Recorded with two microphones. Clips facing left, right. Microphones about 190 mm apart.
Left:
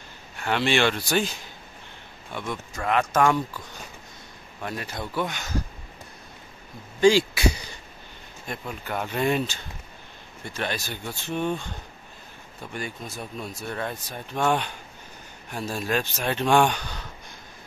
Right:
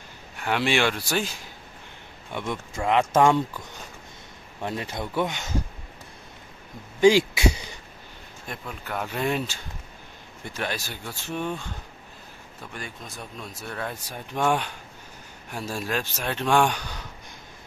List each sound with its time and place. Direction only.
0.4 s speech: 10° right (ahead or behind)
2.3 s speech: 20° right (ahead or behind)
4.6 s speech: 25° right (ahead or behind)
7.0 s a sound: 20° right (ahead or behind)
8.5 s speech: centre (ahead or behind)
10.6 s speech: 5° right (ahead or behind)
12.7 s speech: centre (ahead or behind)
14.0 s speech: 10° right (ahead or behind)